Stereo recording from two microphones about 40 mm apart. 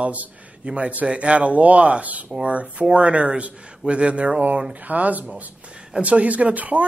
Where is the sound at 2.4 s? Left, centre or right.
Right.